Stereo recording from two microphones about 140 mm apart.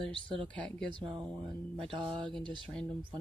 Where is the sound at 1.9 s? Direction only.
35° right (ahead or behind).